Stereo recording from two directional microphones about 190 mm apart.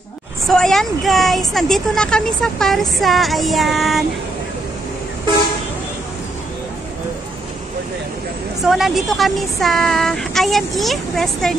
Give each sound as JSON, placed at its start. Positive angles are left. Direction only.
{"t": 0.5, "sound": "speech", "side_deg": 0}
{"t": 8.6, "sound": "speech", "side_deg": 0}